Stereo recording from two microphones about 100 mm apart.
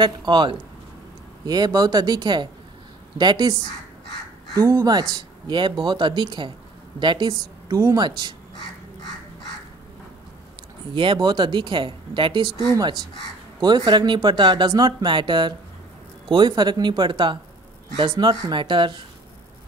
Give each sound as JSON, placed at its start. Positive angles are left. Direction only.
{"t": 0.0, "sound": "speech", "side_deg": -50}
{"t": 4.6, "sound": "speech", "side_deg": -35}
{"t": 7.7, "sound": "speech", "side_deg": -35}
{"t": 10.9, "sound": "speech", "side_deg": -55}